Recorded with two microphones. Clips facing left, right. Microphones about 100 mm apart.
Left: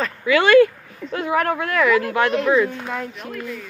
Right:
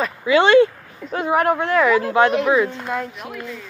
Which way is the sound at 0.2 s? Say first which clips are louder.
Even; 25° right (ahead or behind).